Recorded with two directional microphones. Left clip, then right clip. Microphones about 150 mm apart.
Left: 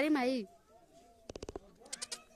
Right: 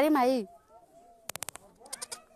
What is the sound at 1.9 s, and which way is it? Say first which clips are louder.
Bleat: right 3 dB; 25° right (ahead or behind).